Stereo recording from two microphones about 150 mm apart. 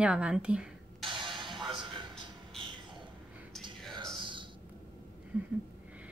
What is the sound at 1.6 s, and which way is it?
Music, 35° right (ahead or behind).